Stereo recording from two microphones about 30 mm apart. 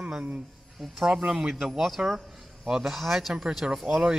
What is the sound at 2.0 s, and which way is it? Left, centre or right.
Speech, right.